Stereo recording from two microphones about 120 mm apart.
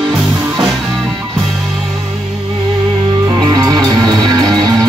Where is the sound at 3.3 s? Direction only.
35° right (ahead or behind).